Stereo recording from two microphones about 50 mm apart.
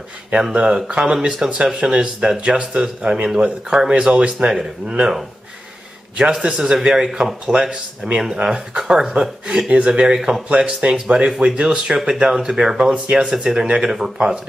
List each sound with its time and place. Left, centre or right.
0.3 s speech: centre
4.5 s speech: centre
6.4 s speech: centre